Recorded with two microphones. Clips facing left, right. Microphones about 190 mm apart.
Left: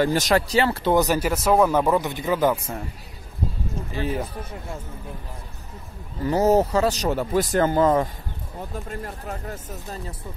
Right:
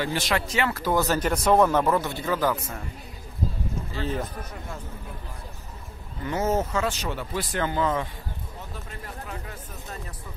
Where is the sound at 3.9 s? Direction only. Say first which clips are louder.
Left 3 dB; 10° left (ahead or behind).